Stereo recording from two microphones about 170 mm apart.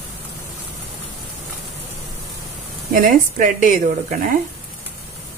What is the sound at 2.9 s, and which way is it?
Speech, 50° right (ahead or behind).